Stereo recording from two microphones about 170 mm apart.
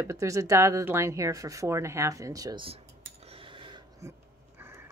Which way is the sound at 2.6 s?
35° right (ahead or behind).